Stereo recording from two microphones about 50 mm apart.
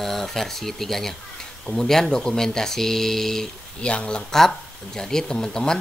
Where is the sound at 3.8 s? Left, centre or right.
Left.